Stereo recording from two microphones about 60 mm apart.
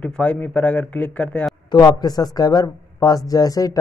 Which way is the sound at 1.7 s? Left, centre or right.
Left.